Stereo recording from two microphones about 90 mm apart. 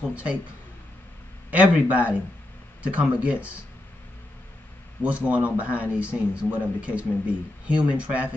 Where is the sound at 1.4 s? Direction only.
15° right (ahead or behind).